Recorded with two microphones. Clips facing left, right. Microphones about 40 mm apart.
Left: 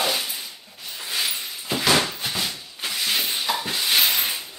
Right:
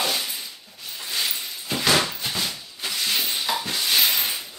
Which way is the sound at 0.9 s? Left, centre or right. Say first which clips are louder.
Left 1 dB; centre.